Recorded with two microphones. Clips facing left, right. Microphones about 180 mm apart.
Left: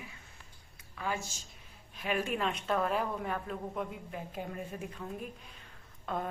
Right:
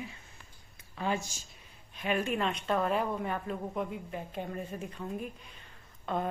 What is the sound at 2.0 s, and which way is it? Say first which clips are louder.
A woman's voice: right 2 dB; centre (ahead or behind).